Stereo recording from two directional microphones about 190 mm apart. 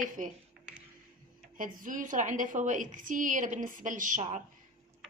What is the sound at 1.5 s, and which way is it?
A woman's voice, 45° right (ahead or behind).